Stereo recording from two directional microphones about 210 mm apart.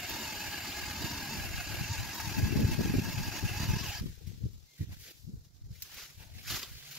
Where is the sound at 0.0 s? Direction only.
Centre (ahead or behind).